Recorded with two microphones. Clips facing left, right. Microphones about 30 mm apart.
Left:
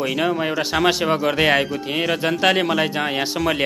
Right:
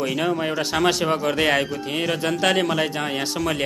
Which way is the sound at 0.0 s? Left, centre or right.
Centre.